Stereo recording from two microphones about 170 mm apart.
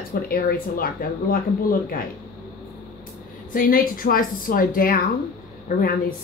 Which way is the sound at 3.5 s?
55° left (ahead or behind).